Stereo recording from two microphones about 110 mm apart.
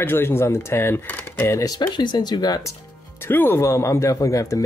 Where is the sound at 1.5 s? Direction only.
35° left (ahead or behind).